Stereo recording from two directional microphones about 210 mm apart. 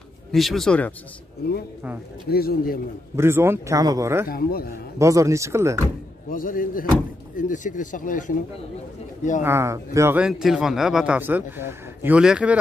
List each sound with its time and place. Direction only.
0.3 s speech: centre (ahead or behind)
2.2 s speech: 45° left (ahead or behind)
3.2 s a man's voice: 10° right (ahead or behind)
4.3 s speech: 45° left (ahead or behind)
4.9 s a man's voice: 15° right (ahead or behind)
6.3 s speech: 40° left (ahead or behind)
9.4 s a man's voice: 10° right (ahead or behind)